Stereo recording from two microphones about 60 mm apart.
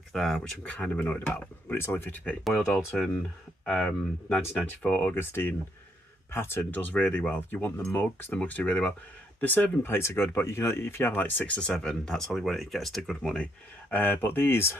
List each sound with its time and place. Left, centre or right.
0.1 s speech: centre
0.7 s speech: centre
1.7 s speech: left
2.6 s speech: left
3.6 s speech: centre; by 6.6 s left
6.6 s speech: left
9.9 s speech: left; by 13.4 s centre
13.4 s speech: left